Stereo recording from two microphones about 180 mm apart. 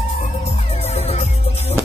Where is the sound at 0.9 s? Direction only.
35° left (ahead or behind).